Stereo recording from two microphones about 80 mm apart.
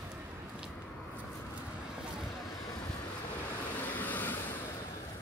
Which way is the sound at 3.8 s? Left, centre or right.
Left.